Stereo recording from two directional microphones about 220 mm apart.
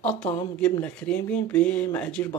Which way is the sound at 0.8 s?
5° left (ahead or behind).